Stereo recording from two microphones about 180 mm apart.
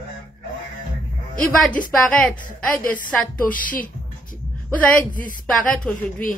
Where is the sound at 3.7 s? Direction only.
50° left (ahead or behind).